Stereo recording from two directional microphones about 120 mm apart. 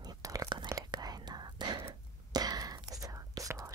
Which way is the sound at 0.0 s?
30° right (ahead or behind).